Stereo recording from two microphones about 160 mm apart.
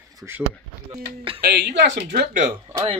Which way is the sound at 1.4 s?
90° right.